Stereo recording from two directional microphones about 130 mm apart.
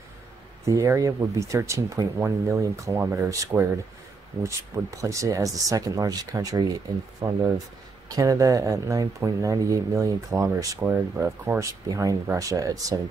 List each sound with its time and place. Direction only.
0.7 s speech: 25° right (ahead or behind)